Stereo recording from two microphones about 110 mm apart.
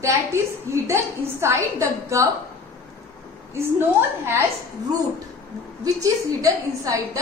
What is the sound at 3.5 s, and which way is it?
Speech, 20° right (ahead or behind).